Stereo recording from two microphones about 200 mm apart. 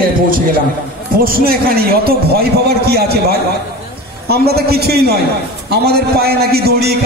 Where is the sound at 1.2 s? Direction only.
50° right (ahead or behind).